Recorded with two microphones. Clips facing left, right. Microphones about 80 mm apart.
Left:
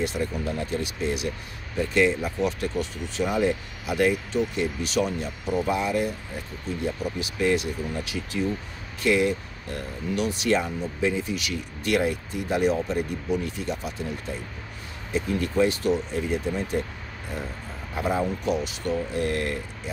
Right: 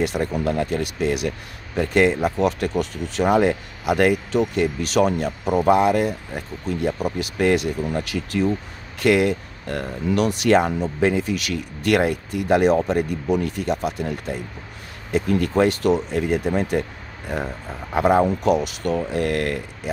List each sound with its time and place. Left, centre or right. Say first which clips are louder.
0.2 s speech: right 6 dB; right
17.9 s speech: right 9 dB; right